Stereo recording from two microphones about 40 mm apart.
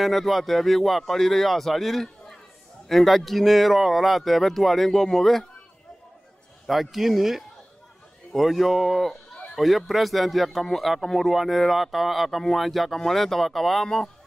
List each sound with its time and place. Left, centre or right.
0.0 s speech: centre
6.7 s speech: centre
13.8 s speech: centre